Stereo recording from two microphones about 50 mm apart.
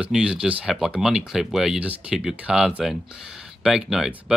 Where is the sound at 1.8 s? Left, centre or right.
Right.